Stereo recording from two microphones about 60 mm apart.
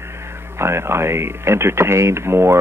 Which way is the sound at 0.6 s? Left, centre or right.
Right.